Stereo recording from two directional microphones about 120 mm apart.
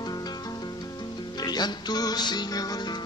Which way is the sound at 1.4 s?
35° left (ahead or behind).